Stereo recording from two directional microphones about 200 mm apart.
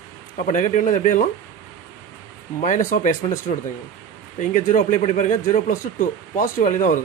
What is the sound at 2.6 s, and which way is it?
Speech, 40° left (ahead or behind).